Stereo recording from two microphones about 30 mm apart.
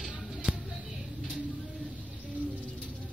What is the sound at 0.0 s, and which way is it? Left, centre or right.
Music, centre.